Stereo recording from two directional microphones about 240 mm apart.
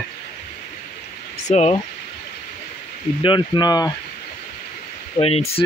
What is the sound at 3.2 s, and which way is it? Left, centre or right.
Speech, centre.